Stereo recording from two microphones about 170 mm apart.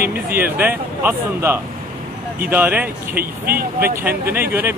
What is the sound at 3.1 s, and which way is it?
Speech, 60° right (ahead or behind).